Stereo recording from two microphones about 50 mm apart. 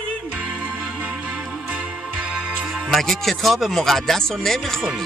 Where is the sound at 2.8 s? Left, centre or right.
Centre.